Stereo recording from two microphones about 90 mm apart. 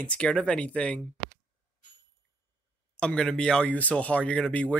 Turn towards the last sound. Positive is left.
turn(degrees=10)  # may be behind; listen again after turning